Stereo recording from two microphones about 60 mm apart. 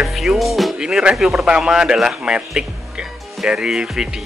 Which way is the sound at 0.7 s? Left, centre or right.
Centre.